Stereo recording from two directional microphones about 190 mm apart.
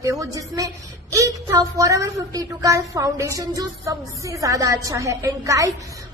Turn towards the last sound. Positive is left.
turn(degrees=-15)  # may be behind; listen again after turning